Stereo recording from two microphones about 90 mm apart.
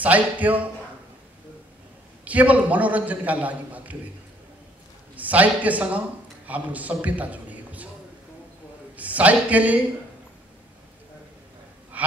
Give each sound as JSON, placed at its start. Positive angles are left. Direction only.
{"t": 0.0, "sound": "a man's voice", "side_deg": -15}
{"t": 2.2, "sound": "a man's voice", "side_deg": -15}
{"t": 5.1, "sound": "a man's voice", "side_deg": -15}
{"t": 8.9, "sound": "speech", "side_deg": -15}